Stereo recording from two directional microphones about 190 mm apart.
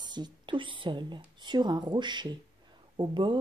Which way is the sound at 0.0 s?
20° right (ahead or behind).